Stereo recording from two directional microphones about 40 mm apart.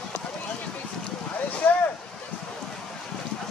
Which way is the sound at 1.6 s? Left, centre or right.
Left.